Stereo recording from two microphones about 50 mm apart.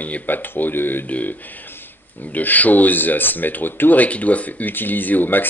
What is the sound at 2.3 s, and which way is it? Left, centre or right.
A man's voice, left.